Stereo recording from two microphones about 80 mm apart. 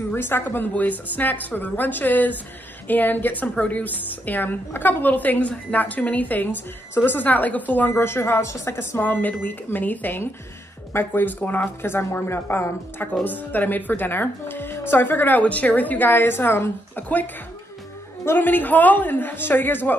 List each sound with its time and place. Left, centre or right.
0.1 s speech: left
7.9 s speech: left